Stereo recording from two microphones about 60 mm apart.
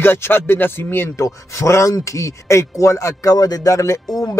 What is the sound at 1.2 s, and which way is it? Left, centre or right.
Speech, left.